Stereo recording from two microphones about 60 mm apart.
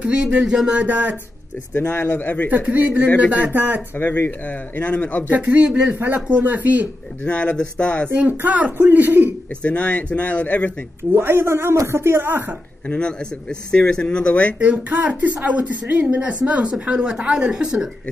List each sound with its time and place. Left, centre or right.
0.0 s speech: right
1.8 s speech: left
2.0 s speech: left
2.5 s speech: right
3.5 s a woman's voice: right
4.7 s a man's voice: left
5.3 s speech: right
7.2 s speech: left
8.1 s a woman's voice: right
9.6 s speech: left
11.1 s a woman's voice: right
13.7 s speech: centre
14.6 s a woman's voice: right